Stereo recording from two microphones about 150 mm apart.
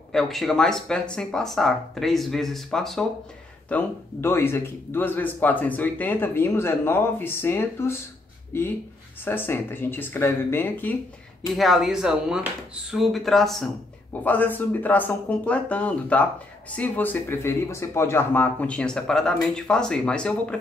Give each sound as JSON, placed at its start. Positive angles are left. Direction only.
{"t": 0.1, "sound": "speech", "side_deg": 0}
{"t": 3.6, "sound": "speech", "side_deg": 15}
{"t": 11.5, "sound": "speech", "side_deg": 0}